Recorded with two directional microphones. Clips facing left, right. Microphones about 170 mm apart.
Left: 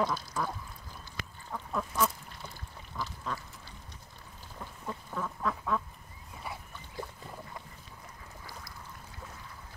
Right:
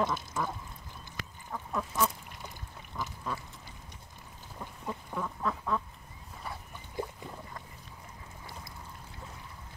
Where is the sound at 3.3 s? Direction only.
10° right (ahead or behind).